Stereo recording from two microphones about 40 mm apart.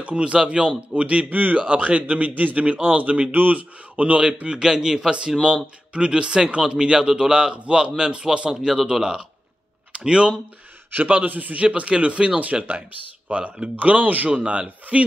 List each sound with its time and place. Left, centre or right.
0.0 s a man's voice: right
1.3 s speech: right
1.6 s a man's voice: right
4.6 s a man's voice: centre
5.9 s a man's voice: right
8.5 s a man's voice: centre
9.9 s speech: right
10.9 s a man's voice: right
13.7 s speech: right
14.3 s a man's voice: right